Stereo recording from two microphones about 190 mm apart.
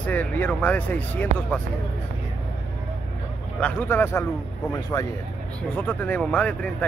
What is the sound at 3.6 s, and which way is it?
Speech, 10° left (ahead or behind).